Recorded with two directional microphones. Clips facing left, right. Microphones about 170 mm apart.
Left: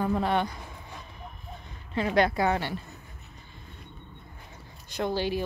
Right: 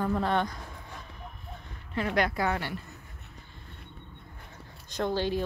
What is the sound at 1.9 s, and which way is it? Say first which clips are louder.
Speech: left 4 dB; 25° left (ahead or behind).